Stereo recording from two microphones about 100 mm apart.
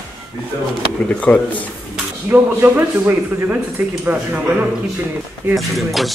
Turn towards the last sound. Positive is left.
turn(degrees=0)  # may be behind; listen again after turning